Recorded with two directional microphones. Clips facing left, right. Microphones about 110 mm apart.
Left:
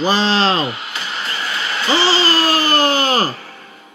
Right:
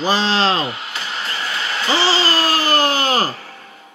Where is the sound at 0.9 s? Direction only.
35° right (ahead or behind).